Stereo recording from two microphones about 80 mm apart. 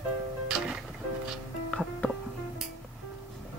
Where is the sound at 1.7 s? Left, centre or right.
Centre.